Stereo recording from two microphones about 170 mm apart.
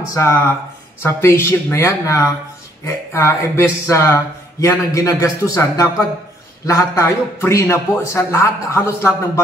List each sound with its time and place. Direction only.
0.1 s speech: 15° left (ahead or behind)